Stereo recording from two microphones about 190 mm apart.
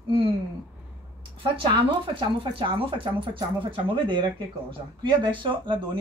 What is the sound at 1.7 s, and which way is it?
Speech, 25° right (ahead or behind).